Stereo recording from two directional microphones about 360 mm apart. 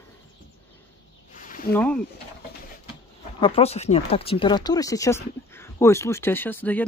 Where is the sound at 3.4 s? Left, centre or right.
Centre.